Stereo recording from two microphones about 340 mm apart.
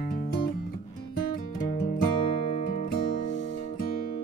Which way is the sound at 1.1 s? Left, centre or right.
Left.